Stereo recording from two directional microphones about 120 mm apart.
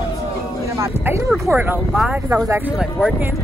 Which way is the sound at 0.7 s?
20° right (ahead or behind).